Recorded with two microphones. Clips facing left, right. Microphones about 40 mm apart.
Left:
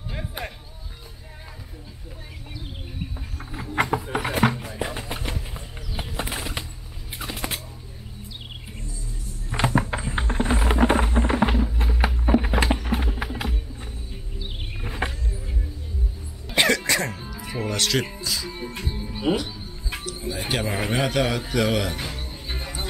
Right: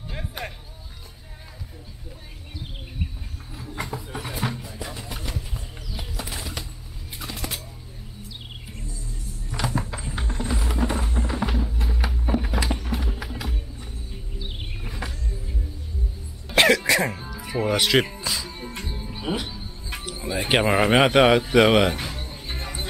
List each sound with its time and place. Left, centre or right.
0.1 s a sound: centre
3.8 s a sound: left
4.6 s music: left
9.8 s music: left
11.5 s fireworks: centre
12.8 s music: left
14.1 s music: centre
14.9 s a sound: left
16.5 s music: centre
17.7 s speech: centre
18.2 s music: centre
18.5 s music: centre
20.1 s a man's voice: centre
21.9 s music: centre